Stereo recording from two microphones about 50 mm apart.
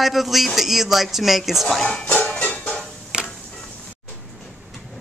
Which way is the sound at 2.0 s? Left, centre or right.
Left.